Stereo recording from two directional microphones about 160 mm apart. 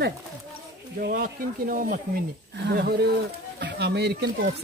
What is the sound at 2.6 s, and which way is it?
Speech, 85° right.